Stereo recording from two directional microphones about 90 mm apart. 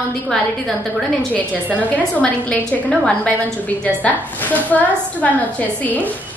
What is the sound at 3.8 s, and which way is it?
A woman's voice, 15° left (ahead or behind).